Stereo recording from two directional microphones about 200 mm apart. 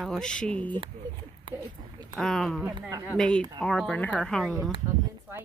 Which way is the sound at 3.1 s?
5° left (ahead or behind).